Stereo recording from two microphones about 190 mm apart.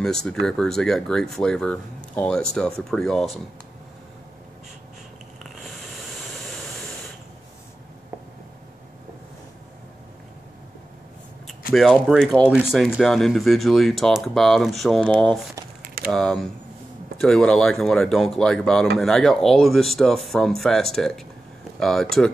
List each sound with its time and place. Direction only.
0.0 s speech: centre (ahead or behind)
11.7 s speech: centre (ahead or behind)